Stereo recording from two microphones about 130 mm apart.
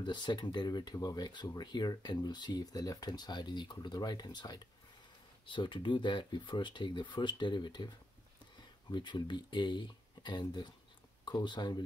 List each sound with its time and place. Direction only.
0.0 s speech: 35° left (ahead or behind)
8.9 s speech: 35° left (ahead or behind)